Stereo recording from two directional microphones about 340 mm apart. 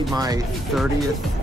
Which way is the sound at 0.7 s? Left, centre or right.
Centre.